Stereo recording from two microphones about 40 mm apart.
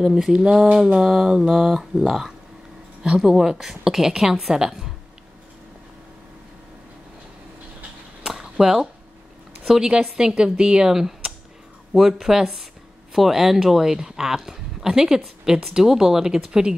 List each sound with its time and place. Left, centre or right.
0.0 s a woman's voice: centre
8.3 s a sound: centre
9.8 s a woman's voice: centre
10.9 s a woman's voice: centre